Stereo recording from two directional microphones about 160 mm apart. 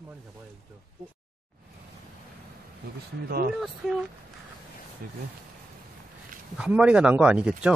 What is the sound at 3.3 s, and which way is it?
Speech, 70° right (ahead or behind).